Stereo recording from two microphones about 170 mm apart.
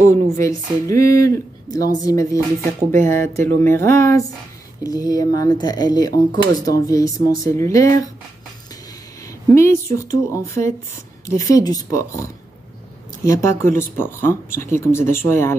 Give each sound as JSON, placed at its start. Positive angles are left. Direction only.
{"t": 0.4, "sound": "speech", "side_deg": 15}
{"t": 9.5, "sound": "speech", "side_deg": 15}